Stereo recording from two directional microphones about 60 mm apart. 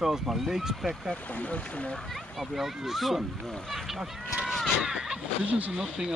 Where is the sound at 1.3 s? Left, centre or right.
Left.